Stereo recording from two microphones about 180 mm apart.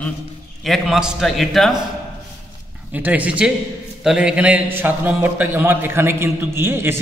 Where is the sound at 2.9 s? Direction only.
10° right (ahead or behind).